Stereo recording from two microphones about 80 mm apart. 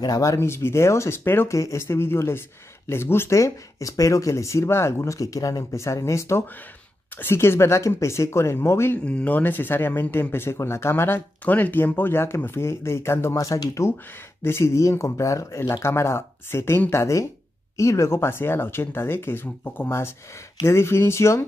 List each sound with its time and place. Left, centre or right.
0.0 s speech: left
0.3 s speech: left
9.0 s speech: centre; by 13.8 s left
14.4 s speech: left